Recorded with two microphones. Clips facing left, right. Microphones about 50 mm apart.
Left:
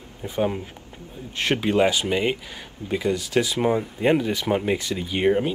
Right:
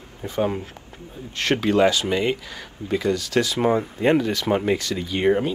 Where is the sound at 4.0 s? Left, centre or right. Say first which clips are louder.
Right 1 dB; centre.